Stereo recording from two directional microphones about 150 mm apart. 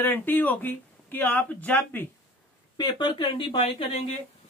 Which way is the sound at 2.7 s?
30° left (ahead or behind).